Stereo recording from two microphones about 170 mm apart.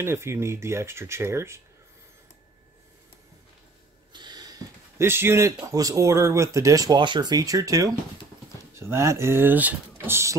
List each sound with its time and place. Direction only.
0.0 s speech: 15° right (ahead or behind)
4.1 s speech: 25° right (ahead or behind)